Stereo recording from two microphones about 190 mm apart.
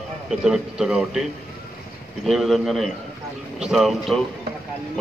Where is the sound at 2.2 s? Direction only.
Centre (ahead or behind).